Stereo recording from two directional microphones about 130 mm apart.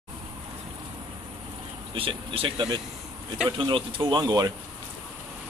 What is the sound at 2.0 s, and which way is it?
Speech, 45° right (ahead or behind).